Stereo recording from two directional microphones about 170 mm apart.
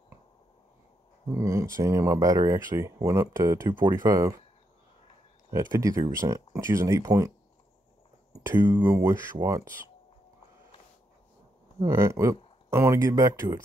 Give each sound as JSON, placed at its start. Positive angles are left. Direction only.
{"t": 1.3, "sound": "speech", "side_deg": -20}
{"t": 5.5, "sound": "speech", "side_deg": -20}
{"t": 11.8, "sound": "speech", "side_deg": -15}